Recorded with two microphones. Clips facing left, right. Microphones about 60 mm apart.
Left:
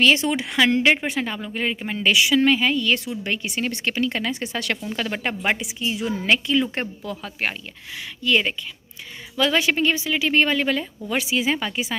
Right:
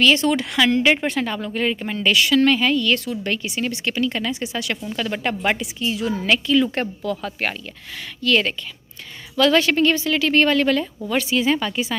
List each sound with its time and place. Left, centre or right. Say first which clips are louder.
0.0 s a woman's voice: right 2 dB; left
0.9 s a woman's voice: right 3 dB; centre
3.5 s speech: right 1 dB; left
5.4 s a woman's voice: right 2 dB; centre
7.2 s a woman's voice: right 2 dB; centre